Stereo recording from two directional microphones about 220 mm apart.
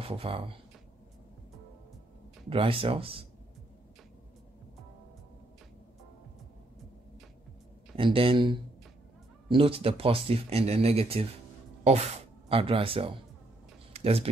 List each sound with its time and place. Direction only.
0.0 s speech: 25° right (ahead or behind)
2.5 s speech: 25° right (ahead or behind)
7.9 s speech: 25° right (ahead or behind)